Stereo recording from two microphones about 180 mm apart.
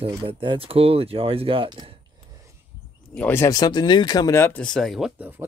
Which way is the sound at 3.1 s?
10° left (ahead or behind).